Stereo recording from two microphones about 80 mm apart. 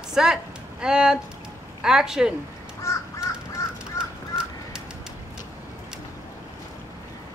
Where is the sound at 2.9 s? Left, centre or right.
Left.